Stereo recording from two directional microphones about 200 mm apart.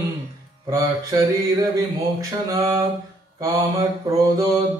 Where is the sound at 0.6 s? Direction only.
20° right (ahead or behind).